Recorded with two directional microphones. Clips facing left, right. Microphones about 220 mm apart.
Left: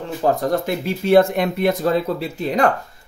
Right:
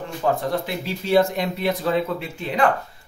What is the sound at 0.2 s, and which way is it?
Speech, 40° left (ahead or behind).